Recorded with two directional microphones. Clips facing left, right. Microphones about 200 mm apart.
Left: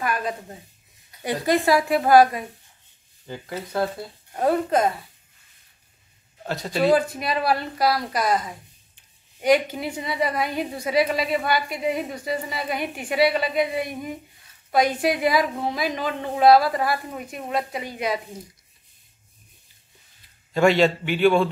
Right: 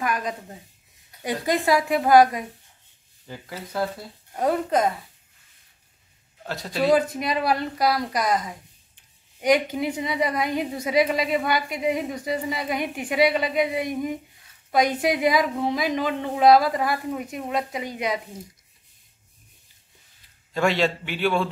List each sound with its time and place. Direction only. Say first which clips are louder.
0.0 s a woman's voice: left 1 dB; 15° right (ahead or behind)
6.4 s a man's voice: left 2 dB; centre (ahead or behind)
6.9 s a woman's voice: right 2 dB; 20° right (ahead or behind)
20.5 s a man's voice: left 4 dB; centre (ahead or behind)